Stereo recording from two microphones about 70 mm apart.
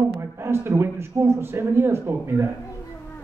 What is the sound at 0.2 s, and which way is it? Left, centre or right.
A man's voice, right.